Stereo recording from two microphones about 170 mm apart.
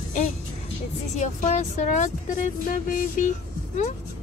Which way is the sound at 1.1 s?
45° left (ahead or behind).